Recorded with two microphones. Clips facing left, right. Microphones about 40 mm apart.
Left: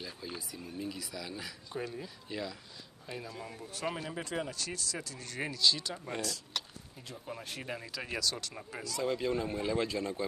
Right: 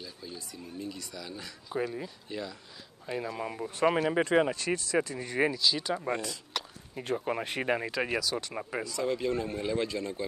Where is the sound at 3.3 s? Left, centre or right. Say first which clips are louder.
Right 8 dB; right.